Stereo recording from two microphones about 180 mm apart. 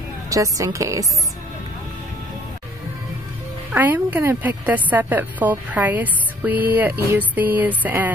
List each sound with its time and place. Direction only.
0.3 s a woman's voice: 20° right (ahead or behind)
3.7 s a woman's voice: 10° right (ahead or behind)